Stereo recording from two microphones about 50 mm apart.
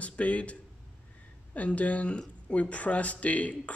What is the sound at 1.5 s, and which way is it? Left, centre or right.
Speech, left.